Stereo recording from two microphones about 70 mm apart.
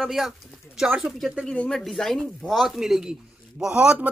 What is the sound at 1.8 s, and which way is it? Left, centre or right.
Speech, centre.